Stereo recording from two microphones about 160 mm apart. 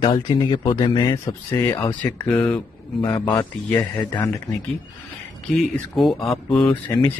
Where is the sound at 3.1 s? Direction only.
25° left (ahead or behind).